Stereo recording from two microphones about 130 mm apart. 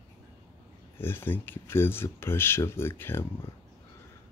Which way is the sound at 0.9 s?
15° left (ahead or behind).